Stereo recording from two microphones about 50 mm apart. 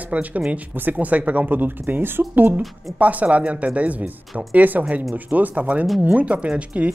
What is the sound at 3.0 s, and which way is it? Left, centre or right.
Speech, right.